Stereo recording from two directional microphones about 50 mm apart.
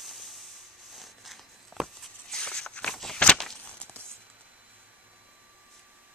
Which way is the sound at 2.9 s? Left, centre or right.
Centre.